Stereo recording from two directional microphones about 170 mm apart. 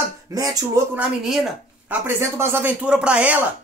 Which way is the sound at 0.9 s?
Centre (ahead or behind).